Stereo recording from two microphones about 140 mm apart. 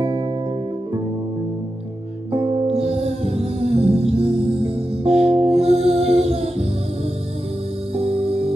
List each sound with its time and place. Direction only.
2.6 s music: 45° right (ahead or behind)
8.0 s music: 45° right (ahead or behind)